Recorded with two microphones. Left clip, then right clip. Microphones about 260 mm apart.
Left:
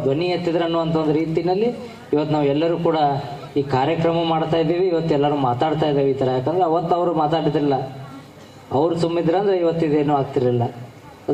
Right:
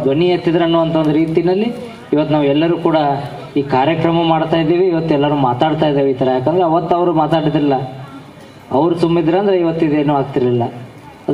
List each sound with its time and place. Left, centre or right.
0.1 s a man's voice: right